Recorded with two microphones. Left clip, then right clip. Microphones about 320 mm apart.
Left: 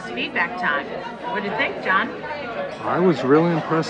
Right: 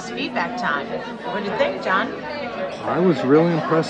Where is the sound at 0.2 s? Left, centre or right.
Centre.